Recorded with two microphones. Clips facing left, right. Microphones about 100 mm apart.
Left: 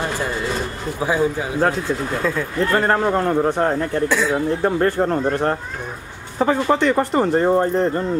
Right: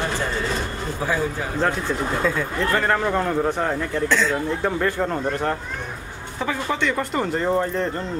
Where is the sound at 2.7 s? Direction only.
30° left (ahead or behind).